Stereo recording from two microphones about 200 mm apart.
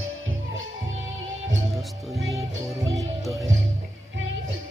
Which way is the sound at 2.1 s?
Centre (ahead or behind).